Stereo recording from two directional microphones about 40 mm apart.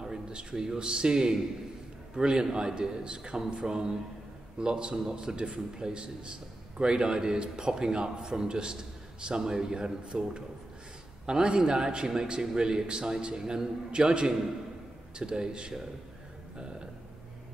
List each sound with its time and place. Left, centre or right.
0.0 s a man's voice: centre